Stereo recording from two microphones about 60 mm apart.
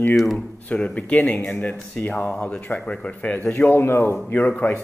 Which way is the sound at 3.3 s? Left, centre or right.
Left.